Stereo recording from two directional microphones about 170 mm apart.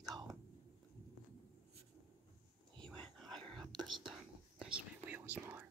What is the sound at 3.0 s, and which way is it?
Whispering, 5° left (ahead or behind).